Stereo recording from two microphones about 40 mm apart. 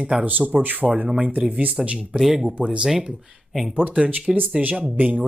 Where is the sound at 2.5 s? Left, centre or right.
Right.